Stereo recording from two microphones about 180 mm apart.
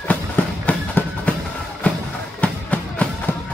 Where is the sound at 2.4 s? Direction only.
5° left (ahead or behind).